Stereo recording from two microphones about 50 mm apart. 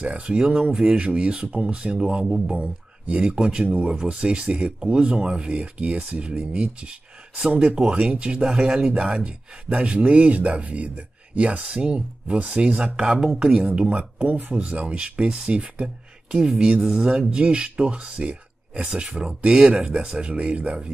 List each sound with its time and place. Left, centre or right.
0.0 s speech: right
0.9 s speech: right
3.6 s speech: right
4.1 s speech: right